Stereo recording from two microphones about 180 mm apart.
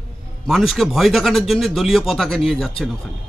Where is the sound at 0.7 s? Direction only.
Centre (ahead or behind).